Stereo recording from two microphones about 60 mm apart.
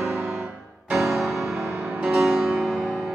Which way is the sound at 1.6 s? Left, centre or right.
Right.